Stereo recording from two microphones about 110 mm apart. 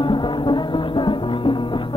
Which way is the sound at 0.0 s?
45° left (ahead or behind).